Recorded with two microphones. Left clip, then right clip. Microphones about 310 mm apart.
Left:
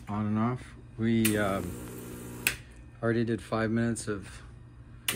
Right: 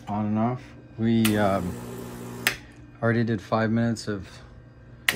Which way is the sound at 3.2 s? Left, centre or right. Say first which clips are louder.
Right 5 dB; right.